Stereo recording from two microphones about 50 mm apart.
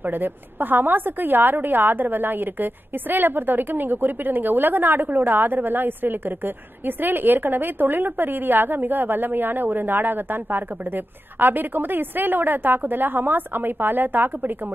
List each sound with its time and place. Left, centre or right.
0.0 s a woman's voice: right